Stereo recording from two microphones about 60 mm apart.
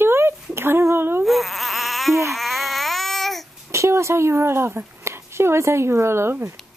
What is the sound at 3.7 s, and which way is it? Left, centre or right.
Speech, right.